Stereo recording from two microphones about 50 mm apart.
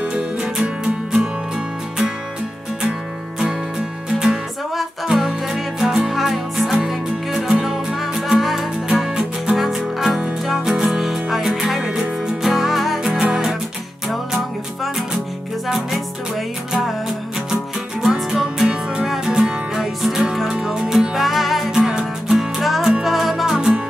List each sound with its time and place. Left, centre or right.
0.0 s music: centre
4.1 s music: centre
18.0 s music: centre